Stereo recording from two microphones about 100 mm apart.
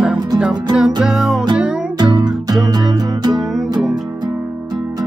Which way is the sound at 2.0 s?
45° right (ahead or behind).